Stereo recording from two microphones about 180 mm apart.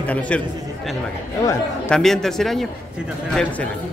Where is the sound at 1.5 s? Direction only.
5° left (ahead or behind).